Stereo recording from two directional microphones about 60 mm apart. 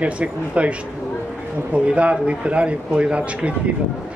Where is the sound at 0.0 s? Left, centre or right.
Right.